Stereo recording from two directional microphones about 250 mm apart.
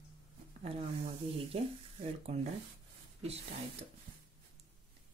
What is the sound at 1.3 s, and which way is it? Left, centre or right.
A woman's voice, right.